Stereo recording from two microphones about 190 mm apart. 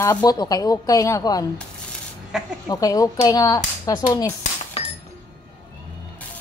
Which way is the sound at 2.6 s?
20° left (ahead or behind).